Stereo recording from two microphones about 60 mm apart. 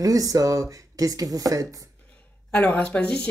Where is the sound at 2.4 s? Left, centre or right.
Left.